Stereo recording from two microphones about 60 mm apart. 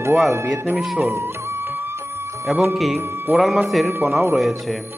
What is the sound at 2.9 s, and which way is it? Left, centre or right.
Speech, right.